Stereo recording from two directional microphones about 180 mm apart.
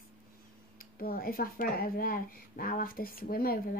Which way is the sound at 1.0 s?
55° left (ahead or behind).